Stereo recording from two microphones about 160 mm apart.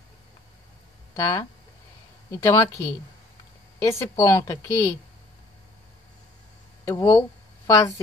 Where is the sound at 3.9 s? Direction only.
20° left (ahead or behind).